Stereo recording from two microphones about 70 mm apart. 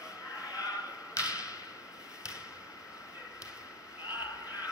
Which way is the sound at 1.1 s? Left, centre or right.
Left.